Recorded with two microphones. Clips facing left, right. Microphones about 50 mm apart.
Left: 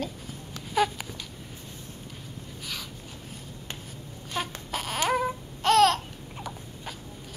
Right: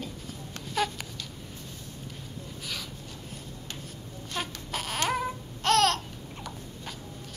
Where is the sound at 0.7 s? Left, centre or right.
Centre.